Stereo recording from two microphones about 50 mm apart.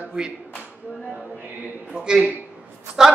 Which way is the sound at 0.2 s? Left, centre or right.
Centre.